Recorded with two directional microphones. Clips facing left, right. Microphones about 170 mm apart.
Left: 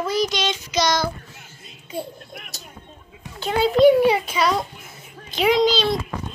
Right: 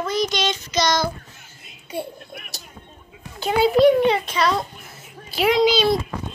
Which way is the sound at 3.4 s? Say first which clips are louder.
Right 1 dB; 10° right (ahead or behind).